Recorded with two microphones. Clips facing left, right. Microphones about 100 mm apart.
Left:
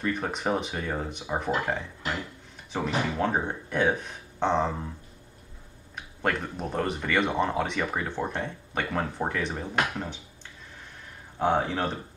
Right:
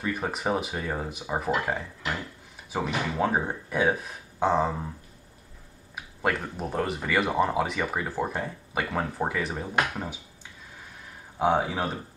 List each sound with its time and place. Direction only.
0.0 s speech: 5° right (ahead or behind)
5.9 s speech: 5° right (ahead or behind)
11.3 s speech: 10° right (ahead or behind)